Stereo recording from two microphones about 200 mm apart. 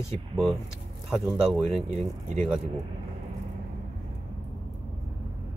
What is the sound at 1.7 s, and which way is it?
Speech, 35° right (ahead or behind).